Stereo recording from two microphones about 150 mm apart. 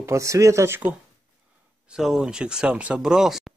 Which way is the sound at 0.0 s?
20° right (ahead or behind).